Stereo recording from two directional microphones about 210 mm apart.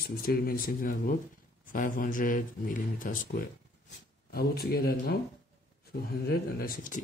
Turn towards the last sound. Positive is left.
turn(degrees=40)  # may be behind; listen again after turning